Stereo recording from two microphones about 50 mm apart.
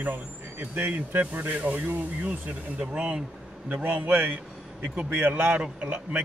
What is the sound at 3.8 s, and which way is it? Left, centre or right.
A man's voice, right.